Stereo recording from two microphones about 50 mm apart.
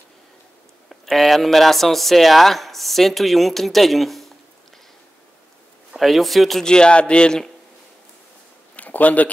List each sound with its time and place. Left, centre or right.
0.8 s speech: centre
5.9 s speech: centre
6.6 s a man's voice: centre
8.7 s a sound: left